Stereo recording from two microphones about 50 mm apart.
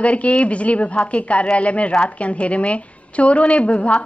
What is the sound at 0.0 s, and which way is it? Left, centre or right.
A woman's voice, left.